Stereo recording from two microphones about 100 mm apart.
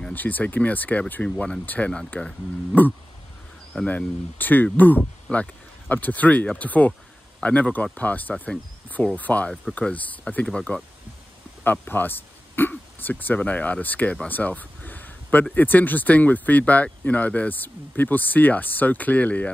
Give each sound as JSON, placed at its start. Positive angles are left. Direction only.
{"t": 0.1, "sound": "speech", "side_deg": 15}
{"t": 14.2, "sound": "a sound", "side_deg": 15}
{"t": 15.5, "sound": "speech", "side_deg": 20}